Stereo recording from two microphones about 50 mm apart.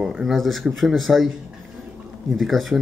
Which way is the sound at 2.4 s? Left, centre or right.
Centre.